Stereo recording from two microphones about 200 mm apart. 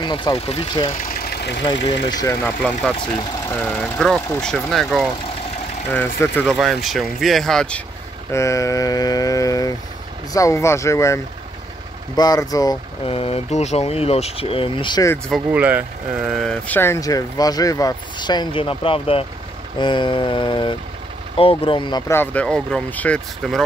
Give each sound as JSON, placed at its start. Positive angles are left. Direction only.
{"t": 0.0, "sound": "speech", "side_deg": 20}
{"t": 0.8, "sound": "vehicle", "side_deg": 45}
{"t": 1.7, "sound": "speech", "side_deg": 20}
{"t": 3.6, "sound": "speech", "side_deg": 10}
{"t": 8.3, "sound": "speech", "side_deg": 15}
{"t": 12.2, "sound": "speech", "side_deg": 20}
{"t": 15.2, "sound": "speech", "side_deg": -5}